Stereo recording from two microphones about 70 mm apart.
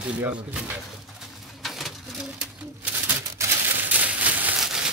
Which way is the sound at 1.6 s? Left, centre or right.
Centre.